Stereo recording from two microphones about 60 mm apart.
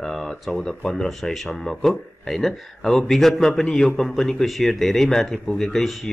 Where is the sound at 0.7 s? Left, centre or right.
Centre.